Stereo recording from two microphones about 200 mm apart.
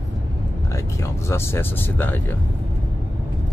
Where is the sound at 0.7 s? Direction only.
15° left (ahead or behind).